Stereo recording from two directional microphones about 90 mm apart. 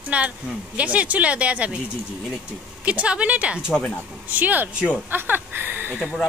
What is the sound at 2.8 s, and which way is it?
A woman's voice, 15° right (ahead or behind).